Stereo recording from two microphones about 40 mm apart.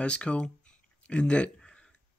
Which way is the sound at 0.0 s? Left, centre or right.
Left.